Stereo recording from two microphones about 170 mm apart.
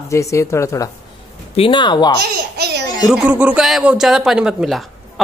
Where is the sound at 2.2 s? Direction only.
75° right (ahead or behind).